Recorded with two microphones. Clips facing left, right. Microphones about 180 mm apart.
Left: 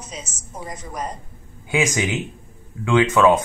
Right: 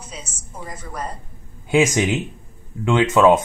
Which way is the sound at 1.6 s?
25° right (ahead or behind).